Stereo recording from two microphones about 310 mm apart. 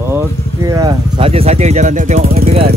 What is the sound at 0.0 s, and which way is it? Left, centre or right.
Speech, centre.